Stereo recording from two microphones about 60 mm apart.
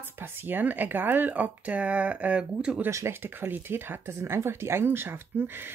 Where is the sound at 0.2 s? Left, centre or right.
Right.